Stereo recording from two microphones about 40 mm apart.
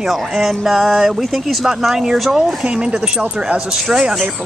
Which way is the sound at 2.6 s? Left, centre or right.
Right.